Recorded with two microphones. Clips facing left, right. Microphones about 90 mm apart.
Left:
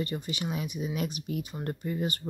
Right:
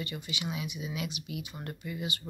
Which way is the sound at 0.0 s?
40° left (ahead or behind).